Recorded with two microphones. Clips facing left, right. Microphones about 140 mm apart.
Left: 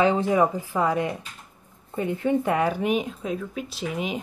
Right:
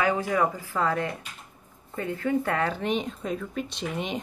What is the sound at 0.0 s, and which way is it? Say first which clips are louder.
Speech: left 4 dB; 25° left (ahead or behind).